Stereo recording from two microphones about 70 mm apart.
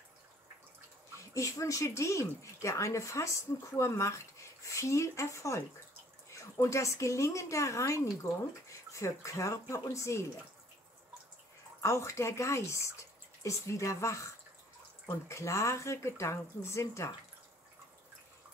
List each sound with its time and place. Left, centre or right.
1.3 s speech: left
11.8 s speech: left